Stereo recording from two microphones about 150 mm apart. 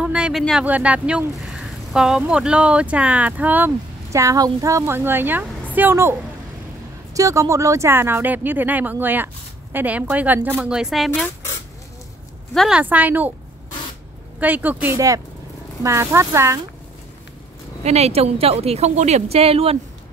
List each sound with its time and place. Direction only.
0.0 s speech: 5° right (ahead or behind)
7.2 s speech: 20° right (ahead or behind); by 11.2 s centre (ahead or behind)
12.5 s speech: 5° right (ahead or behind)
14.4 s speech: 10° right (ahead or behind)
15.0 s speech: 25° right (ahead or behind)
17.8 s a woman's voice: 45° right (ahead or behind)